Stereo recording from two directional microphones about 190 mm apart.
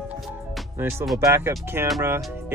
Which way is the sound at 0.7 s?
15° right (ahead or behind).